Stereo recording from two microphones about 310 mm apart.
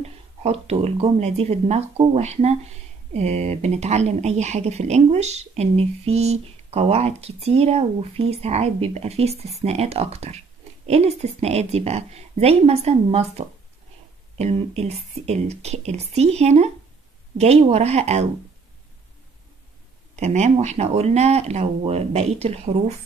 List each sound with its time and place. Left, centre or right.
0.0 s speech: centre
20.2 s speech: right